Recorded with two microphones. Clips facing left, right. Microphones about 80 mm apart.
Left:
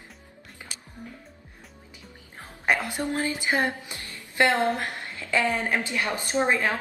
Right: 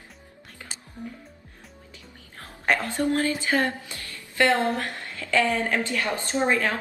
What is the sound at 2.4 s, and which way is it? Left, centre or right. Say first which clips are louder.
Speech: right 1 dB; centre.